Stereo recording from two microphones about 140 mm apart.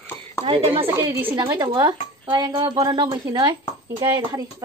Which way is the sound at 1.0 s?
15° right (ahead or behind).